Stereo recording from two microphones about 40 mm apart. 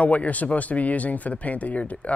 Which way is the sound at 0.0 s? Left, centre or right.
Left.